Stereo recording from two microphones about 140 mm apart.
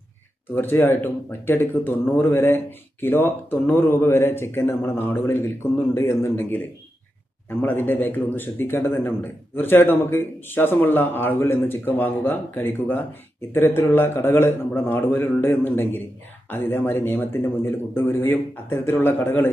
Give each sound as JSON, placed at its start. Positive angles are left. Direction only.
{"t": 0.6, "sound": "speech", "side_deg": 15}